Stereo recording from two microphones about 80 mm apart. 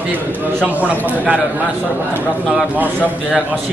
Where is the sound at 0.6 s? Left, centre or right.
Centre.